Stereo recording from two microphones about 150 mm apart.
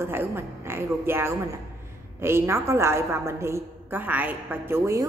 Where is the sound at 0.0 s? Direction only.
15° right (ahead or behind).